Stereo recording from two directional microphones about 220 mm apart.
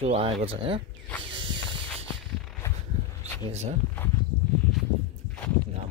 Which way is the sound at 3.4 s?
30° right (ahead or behind).